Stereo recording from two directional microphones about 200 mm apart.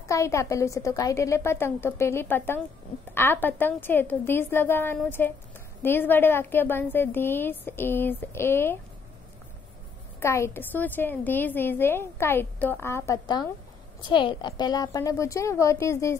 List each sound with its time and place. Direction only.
0.0 s a woman's voice: 15° left (ahead or behind)
10.2 s a woman's voice: 15° left (ahead or behind)